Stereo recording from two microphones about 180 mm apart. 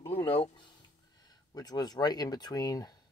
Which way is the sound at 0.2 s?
30° left (ahead or behind).